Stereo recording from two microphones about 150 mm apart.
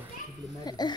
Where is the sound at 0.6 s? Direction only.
30° left (ahead or behind).